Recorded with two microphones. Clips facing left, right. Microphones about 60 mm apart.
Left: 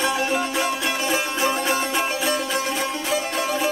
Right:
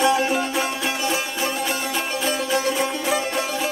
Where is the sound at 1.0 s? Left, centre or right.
Centre.